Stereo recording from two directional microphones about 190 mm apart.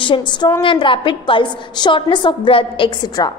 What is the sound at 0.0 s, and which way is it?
A woman's voice, 25° left (ahead or behind).